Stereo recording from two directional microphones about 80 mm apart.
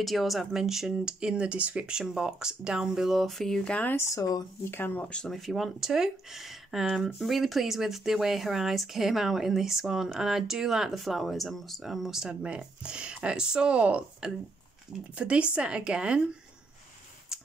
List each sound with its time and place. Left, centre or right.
0.0 s speech: centre
3.9 s speech: left
5.0 s speech: centre
5.3 s speech: centre
17.3 s a sound: centre